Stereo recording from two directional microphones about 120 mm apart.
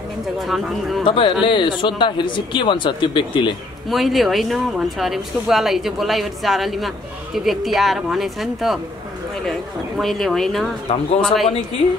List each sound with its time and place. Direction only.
0.4 s speech: centre (ahead or behind)
1.0 s speech: 45° left (ahead or behind)
3.9 s speech: centre (ahead or behind)